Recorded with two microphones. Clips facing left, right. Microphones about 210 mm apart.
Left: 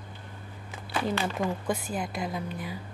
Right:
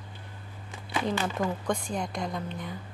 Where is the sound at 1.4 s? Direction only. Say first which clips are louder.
Even; 5° left (ahead or behind).